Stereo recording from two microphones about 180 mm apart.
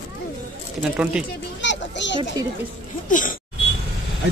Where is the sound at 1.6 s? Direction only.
80° left.